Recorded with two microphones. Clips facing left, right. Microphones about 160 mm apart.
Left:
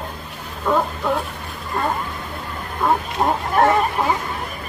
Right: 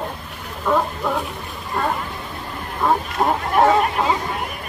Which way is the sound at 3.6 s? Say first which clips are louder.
Right 1 dB; 15° right (ahead or behind).